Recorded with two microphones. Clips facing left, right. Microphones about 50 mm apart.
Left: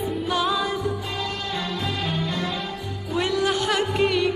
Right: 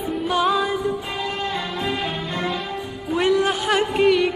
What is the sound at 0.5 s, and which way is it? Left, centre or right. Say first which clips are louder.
Music: right 4 dB; centre.